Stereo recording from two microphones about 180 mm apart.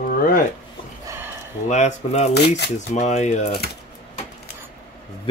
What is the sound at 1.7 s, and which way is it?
Speech, 40° left (ahead or behind).